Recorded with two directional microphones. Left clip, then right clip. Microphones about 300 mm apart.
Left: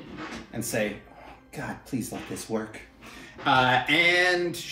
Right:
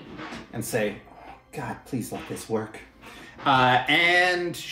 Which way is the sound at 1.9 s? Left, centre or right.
Centre.